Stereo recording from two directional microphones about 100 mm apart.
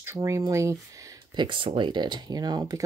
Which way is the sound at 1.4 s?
55° right (ahead or behind).